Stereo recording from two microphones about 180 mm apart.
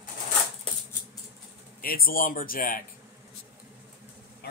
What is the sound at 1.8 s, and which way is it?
Speech, 55° left (ahead or behind).